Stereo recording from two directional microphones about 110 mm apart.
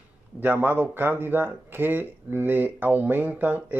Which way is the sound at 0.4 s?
20° right (ahead or behind).